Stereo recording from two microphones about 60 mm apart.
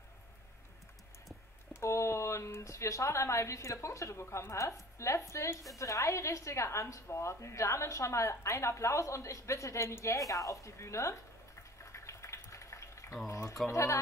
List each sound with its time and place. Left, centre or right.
1.7 s a woman's voice: left
11.8 s a sound: left
13.7 s a woman's voice: left